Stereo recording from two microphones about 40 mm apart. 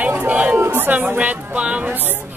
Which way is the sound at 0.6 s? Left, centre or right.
Right.